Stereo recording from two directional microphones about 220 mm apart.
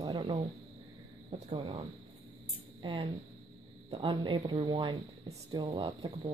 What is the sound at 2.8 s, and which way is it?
A woman's voice, 20° right (ahead or behind).